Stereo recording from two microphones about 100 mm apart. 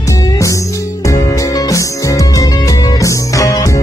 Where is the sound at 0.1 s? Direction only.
35° left (ahead or behind).